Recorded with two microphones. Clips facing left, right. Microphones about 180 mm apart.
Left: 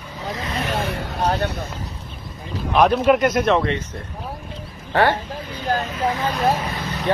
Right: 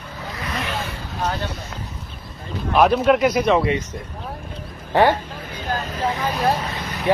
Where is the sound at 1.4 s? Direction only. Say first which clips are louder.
Left 5 dB; 65° left (ahead or behind).